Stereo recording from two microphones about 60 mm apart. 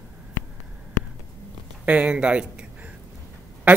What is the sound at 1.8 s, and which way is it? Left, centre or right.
Speech, right.